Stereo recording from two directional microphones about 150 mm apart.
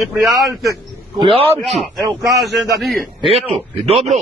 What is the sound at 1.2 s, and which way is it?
Speech, 40° right (ahead or behind).